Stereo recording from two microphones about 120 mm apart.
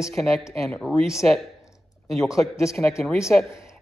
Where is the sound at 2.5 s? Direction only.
25° left (ahead or behind).